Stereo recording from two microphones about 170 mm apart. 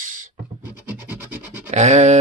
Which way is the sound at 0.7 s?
10° right (ahead or behind).